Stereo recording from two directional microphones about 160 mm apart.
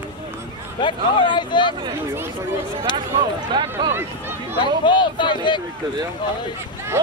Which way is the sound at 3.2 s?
30° right (ahead or behind).